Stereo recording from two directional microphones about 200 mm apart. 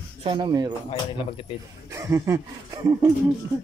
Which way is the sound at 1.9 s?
15° right (ahead or behind).